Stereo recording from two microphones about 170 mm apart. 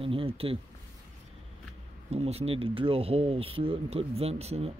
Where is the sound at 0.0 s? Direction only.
30° right (ahead or behind).